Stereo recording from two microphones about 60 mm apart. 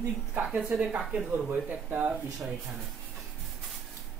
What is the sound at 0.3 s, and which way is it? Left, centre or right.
Speech, right.